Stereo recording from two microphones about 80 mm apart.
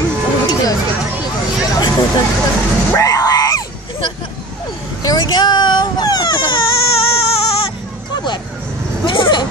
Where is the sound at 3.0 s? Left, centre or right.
Left.